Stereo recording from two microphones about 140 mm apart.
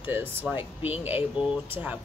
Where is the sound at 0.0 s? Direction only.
15° right (ahead or behind).